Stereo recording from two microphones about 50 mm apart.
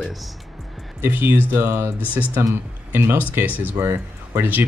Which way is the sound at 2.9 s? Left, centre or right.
Right.